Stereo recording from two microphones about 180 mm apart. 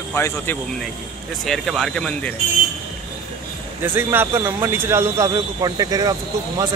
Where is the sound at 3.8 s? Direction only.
10° right (ahead or behind).